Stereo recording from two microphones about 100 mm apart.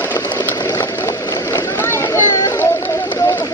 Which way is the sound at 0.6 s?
45° left (ahead or behind).